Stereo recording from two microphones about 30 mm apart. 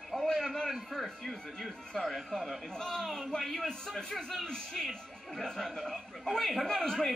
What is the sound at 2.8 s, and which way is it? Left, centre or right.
Speech, centre.